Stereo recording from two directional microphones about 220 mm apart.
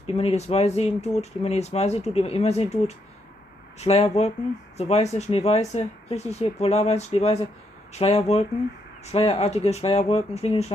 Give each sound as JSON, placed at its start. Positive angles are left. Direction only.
{"t": 0.0, "sound": "speech", "side_deg": 30}